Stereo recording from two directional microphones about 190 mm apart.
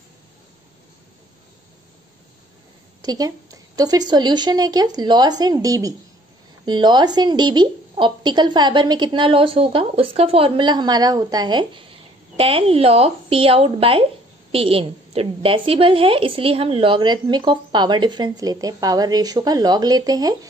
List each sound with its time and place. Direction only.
3.0 s a woman's voice: 20° right (ahead or behind)